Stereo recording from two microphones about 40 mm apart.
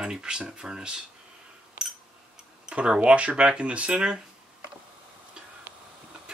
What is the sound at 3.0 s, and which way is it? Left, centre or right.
Speech, right.